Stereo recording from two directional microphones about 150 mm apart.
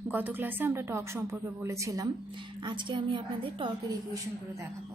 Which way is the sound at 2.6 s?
30° right (ahead or behind).